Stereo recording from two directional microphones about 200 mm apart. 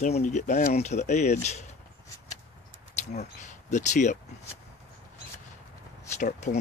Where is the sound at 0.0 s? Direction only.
35° left (ahead or behind).